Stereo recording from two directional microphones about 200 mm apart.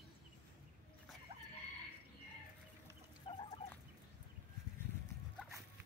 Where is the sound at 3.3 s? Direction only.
25° left (ahead or behind).